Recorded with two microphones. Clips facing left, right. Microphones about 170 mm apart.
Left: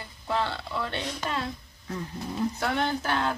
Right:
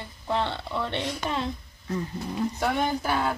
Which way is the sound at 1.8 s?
Centre (ahead or behind).